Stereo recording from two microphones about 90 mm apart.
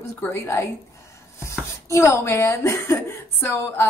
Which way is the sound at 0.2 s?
25° left (ahead or behind).